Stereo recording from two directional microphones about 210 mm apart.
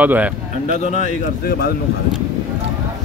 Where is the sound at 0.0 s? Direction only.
5° right (ahead or behind).